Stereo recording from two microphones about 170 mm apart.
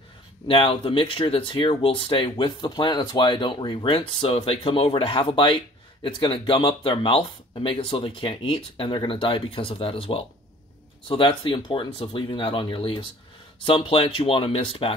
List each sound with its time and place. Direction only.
0.5 s speech: 30° left (ahead or behind)